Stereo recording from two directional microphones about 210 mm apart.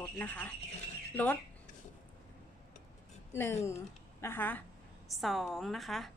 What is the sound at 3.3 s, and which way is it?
A woman's voice, 10° left (ahead or behind).